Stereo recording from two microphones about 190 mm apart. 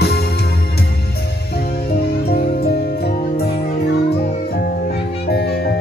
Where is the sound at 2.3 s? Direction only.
55° left (ahead or behind).